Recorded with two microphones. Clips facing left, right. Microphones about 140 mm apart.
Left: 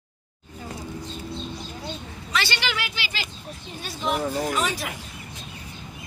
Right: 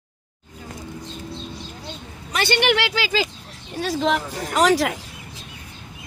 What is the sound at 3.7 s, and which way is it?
Speech, 90° right.